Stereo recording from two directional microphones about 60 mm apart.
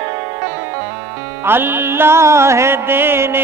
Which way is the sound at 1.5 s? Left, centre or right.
Right.